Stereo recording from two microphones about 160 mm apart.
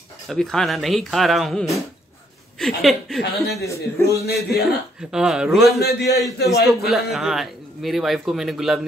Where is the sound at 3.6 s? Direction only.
20° left (ahead or behind).